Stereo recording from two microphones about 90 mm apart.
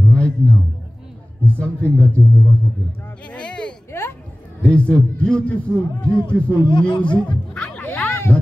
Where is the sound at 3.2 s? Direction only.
10° left (ahead or behind).